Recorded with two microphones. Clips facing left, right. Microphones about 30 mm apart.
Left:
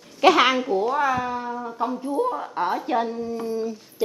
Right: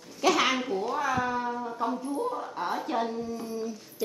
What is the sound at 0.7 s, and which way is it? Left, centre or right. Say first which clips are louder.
Speech: left 7 dB; centre.